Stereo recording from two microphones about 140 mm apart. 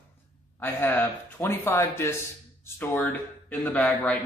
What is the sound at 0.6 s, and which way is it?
Speech, 15° left (ahead or behind).